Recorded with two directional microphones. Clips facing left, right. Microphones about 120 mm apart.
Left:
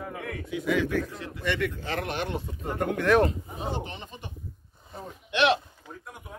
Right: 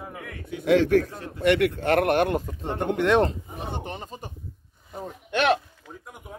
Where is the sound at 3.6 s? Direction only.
55° right (ahead or behind).